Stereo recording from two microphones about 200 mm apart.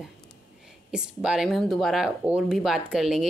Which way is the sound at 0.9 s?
5° right (ahead or behind).